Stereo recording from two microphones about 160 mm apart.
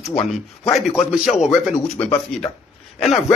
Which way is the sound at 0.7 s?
Centre (ahead or behind).